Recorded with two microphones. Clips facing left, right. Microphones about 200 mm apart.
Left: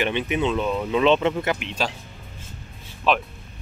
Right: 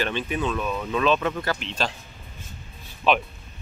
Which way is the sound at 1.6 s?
10° left (ahead or behind).